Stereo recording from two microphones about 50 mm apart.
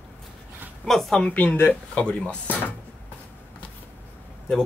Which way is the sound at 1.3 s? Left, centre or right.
Left.